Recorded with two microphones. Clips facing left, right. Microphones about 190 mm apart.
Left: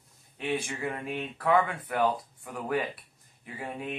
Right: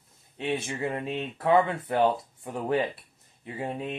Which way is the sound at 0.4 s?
25° right (ahead or behind).